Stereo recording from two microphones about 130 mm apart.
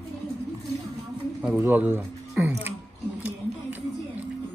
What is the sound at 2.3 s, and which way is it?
Music, 15° right (ahead or behind).